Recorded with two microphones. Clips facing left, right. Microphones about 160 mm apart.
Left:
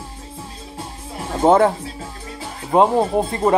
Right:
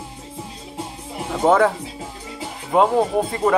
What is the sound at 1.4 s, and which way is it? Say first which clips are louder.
Speech: left 2 dB; 30° left (ahead or behind).